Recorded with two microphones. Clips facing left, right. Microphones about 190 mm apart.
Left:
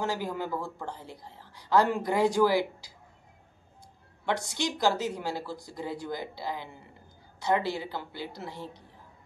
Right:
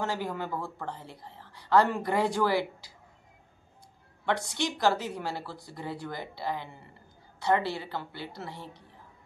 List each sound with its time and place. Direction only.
0.0 s a woman's voice: 15° left (ahead or behind)
4.6 s a woman's voice: 15° left (ahead or behind)